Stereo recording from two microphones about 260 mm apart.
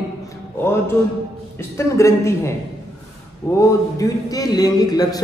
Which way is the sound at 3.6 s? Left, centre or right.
Centre.